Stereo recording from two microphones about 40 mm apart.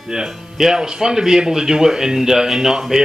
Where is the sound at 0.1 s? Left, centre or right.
Centre.